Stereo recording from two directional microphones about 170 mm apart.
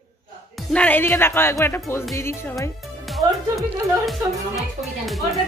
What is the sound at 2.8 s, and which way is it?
A woman's voice, centre (ahead or behind).